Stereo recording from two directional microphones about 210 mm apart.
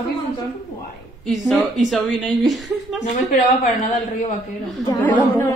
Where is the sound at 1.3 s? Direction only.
Centre (ahead or behind).